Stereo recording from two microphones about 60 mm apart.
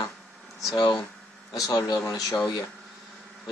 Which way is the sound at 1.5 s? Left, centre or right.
Left.